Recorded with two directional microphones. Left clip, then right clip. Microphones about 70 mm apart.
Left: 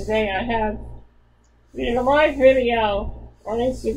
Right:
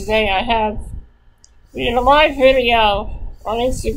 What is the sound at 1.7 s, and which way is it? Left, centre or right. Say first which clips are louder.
A woman's voice: right 6 dB; right.